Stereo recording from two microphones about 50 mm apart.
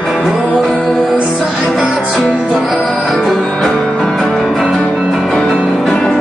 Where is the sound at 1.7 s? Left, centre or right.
Centre.